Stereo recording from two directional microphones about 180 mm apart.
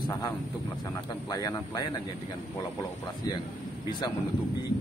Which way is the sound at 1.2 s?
20° left (ahead or behind).